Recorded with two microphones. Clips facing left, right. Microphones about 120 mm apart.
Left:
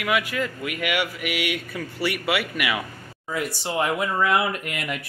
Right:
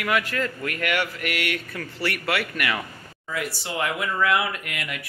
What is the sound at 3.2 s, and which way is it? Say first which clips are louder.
Speech: left 2 dB; 25° left (ahead or behind).